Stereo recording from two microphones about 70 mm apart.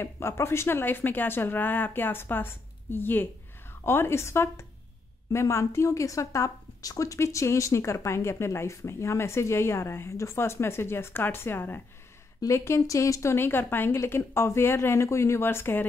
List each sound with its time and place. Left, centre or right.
0.0 s a woman's voice: left
12.4 s a woman's voice: left